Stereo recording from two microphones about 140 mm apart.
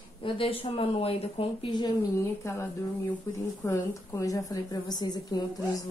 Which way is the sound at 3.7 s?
25° left (ahead or behind).